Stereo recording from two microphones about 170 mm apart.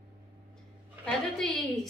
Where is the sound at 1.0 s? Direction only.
Centre (ahead or behind).